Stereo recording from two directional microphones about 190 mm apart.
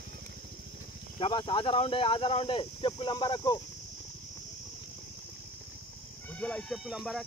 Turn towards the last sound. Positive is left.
turn(degrees=0)  # may be behind; listen again after turning